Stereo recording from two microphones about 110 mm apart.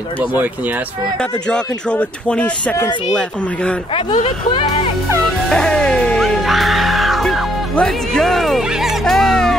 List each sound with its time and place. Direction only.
1.5 s speech: 10° left (ahead or behind)
4.1 s speech: 45° left (ahead or behind)
5.2 s music: 5° left (ahead or behind)